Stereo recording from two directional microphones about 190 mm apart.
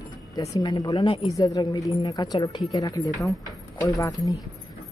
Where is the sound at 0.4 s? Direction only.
20° left (ahead or behind).